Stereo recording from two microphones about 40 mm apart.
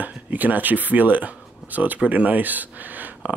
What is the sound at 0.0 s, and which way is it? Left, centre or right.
Speech, right.